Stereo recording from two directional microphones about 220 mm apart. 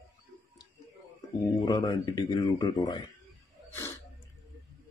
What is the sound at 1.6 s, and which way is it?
Speech, 20° left (ahead or behind).